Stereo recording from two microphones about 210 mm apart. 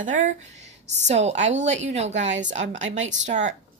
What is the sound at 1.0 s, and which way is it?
Speech, 30° right (ahead or behind).